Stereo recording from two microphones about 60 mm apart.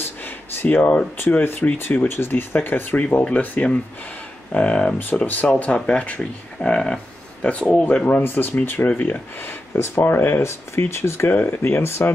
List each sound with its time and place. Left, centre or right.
0.0 s a sound: left
1.3 s speech: left
5.9 s a sound: centre
7.8 s speech: left
10.4 s speech: left
11.3 s speech: left